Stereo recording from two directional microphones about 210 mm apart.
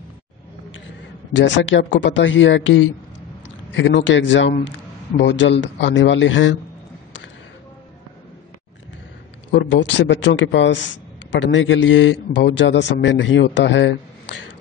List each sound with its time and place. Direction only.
1.3 s a man's voice: 60° left (ahead or behind)
9.5 s a man's voice: 60° left (ahead or behind)